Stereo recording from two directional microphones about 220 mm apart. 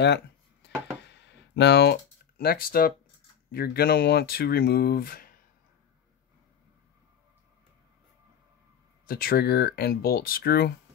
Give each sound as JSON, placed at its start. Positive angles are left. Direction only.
{"t": 0.0, "sound": "a sound", "side_deg": 50}
{"t": 3.5, "sound": "speech", "side_deg": 45}
{"t": 9.0, "sound": "speech", "side_deg": 40}